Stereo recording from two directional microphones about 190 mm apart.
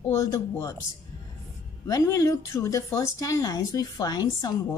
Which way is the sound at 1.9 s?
15° left (ahead or behind).